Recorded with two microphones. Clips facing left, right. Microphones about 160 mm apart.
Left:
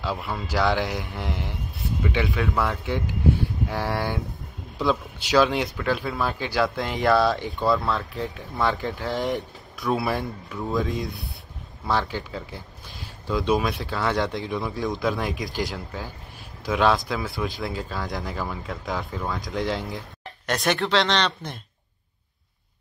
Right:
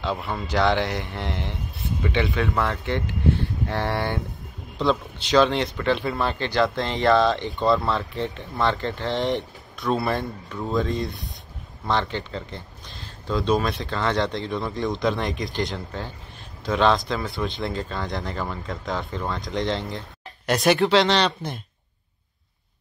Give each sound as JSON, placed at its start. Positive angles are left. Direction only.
{"t": 0.0, "sound": "speech", "side_deg": 5}
{"t": 19.9, "sound": "a sound", "side_deg": 0}
{"t": 20.6, "sound": "speech", "side_deg": -5}